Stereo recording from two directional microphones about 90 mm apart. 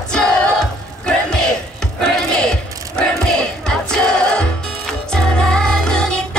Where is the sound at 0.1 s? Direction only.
5° left (ahead or behind).